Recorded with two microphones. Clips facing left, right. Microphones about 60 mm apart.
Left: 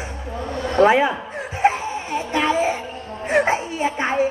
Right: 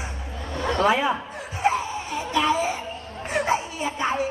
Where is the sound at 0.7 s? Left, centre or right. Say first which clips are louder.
Left 6 dB; left.